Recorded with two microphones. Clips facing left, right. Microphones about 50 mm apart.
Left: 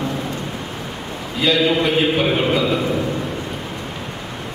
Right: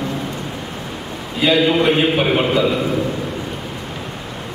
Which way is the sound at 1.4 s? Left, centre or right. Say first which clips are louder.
Right 2 dB; centre.